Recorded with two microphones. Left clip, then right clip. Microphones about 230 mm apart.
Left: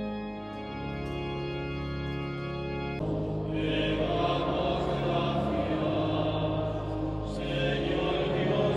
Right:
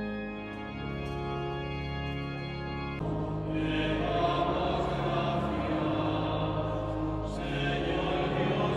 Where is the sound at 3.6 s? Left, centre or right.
Centre.